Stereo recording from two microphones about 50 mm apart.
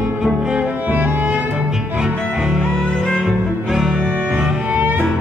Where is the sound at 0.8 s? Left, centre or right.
Right.